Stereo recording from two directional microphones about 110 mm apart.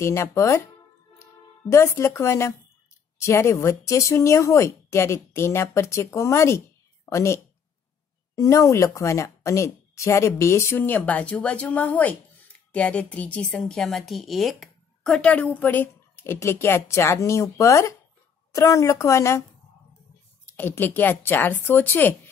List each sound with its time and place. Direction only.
0.0 s speech: 25° left (ahead or behind)
1.1 s a sound: 25° left (ahead or behind)
3.2 s speech: 25° left (ahead or behind)
20.4 s speech: 20° left (ahead or behind)